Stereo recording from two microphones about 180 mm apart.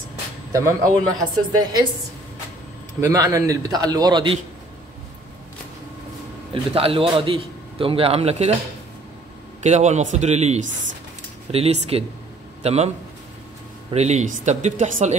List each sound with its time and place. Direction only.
0.5 s a man's voice: 15° right (ahead or behind)
3.0 s a man's voice: 20° right (ahead or behind)
6.5 s speech: 30° right (ahead or behind)
9.6 s speech: 40° right (ahead or behind)
13.9 s speech: 40° right (ahead or behind)